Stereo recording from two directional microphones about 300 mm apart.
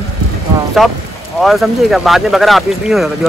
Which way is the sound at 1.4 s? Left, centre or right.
Centre.